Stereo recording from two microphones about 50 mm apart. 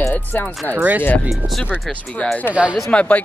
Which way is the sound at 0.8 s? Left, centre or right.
Right.